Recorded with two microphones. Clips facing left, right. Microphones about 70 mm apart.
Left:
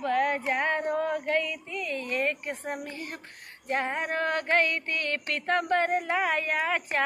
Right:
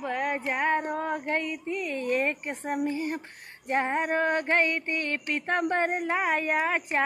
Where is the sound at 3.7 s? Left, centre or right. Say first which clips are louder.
Right 2 dB; right.